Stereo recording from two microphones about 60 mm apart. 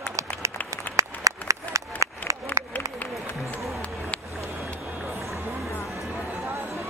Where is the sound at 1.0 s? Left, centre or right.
Right.